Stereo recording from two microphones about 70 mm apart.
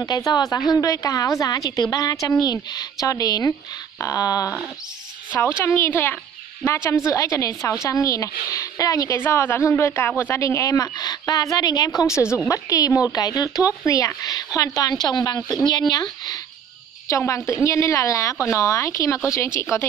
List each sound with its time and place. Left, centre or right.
0.3 s a woman's voice: left
5.4 s speech: left
6.6 s speech: left
9.1 s speech: left
10.4 s speech: left
11.0 s speech: left
13.1 s speech: left
15.9 s speech: left
17.6 s speech: left